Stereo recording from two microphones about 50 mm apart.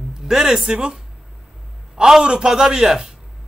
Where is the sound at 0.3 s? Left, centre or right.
Centre.